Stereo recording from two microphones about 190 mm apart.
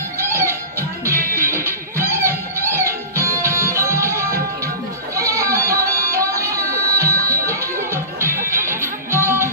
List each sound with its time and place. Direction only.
0.3 s music: 15° right (ahead or behind)
5.1 s goat: 15° right (ahead or behind)
5.9 s music: 15° right (ahead or behind)